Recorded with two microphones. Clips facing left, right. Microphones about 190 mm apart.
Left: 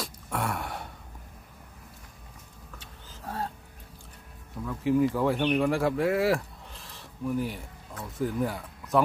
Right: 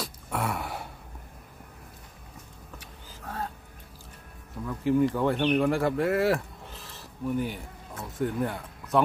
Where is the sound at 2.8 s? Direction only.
30° left (ahead or behind).